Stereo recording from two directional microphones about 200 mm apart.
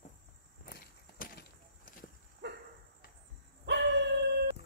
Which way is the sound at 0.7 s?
45° left (ahead or behind).